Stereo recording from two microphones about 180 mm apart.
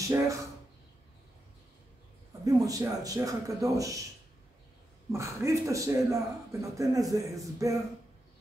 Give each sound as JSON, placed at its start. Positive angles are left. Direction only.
{"t": 0.0, "sound": "speech", "side_deg": -15}
{"t": 2.4, "sound": "speech", "side_deg": -20}
{"t": 5.1, "sound": "a man's voice", "side_deg": -15}